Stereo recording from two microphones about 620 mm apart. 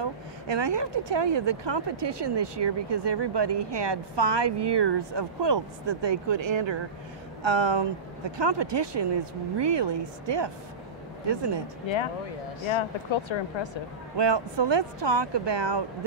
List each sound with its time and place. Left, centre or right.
0.0 s speech: right
12.7 s speech: left
14.1 s speech: right